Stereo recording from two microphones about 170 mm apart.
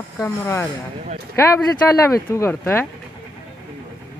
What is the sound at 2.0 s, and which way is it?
Speech, 15° left (ahead or behind).